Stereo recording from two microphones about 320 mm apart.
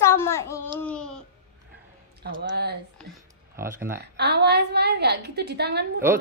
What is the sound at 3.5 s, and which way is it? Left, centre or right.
Speech, centre.